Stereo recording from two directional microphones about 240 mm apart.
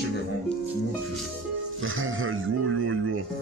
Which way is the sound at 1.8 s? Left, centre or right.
Right.